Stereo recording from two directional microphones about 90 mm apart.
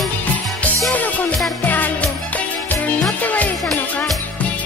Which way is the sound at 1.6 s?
20° left (ahead or behind).